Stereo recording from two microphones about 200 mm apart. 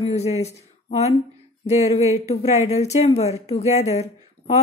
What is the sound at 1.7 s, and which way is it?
Speech, 35° left (ahead or behind).